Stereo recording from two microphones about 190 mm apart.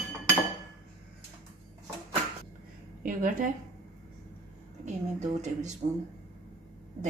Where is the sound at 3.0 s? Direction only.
45° right (ahead or behind).